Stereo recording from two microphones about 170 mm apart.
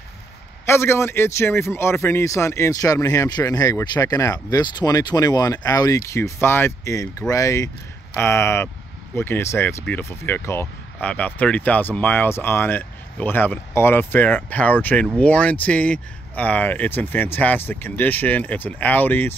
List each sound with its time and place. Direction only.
0.7 s a man's voice: 15° left (ahead or behind)